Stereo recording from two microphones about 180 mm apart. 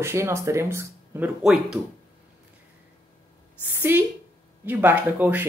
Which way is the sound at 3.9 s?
15° right (ahead or behind).